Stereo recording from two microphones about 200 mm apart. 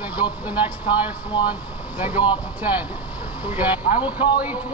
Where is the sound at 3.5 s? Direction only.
10° right (ahead or behind).